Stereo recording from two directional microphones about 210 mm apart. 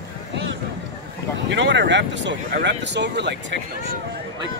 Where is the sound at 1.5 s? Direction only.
60° right (ahead or behind).